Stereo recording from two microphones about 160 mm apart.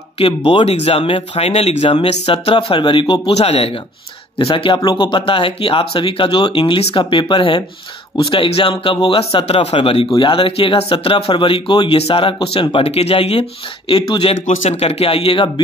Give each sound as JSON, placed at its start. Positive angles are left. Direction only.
{"t": 0.2, "sound": "a man's voice", "side_deg": 35}
{"t": 14.4, "sound": "a man's voice", "side_deg": 50}